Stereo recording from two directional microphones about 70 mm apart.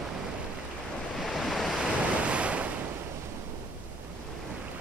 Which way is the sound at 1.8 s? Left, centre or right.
Centre.